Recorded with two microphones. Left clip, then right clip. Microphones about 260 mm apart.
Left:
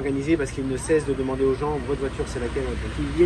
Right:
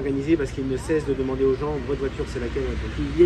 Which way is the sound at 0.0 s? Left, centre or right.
Centre.